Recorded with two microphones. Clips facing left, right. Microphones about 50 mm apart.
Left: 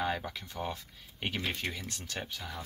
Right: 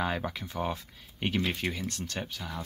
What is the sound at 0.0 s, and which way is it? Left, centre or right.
Speech, right.